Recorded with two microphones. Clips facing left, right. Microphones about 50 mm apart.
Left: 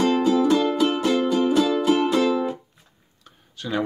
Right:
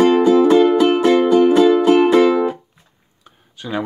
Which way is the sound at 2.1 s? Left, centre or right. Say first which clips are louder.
Right 8 dB; right.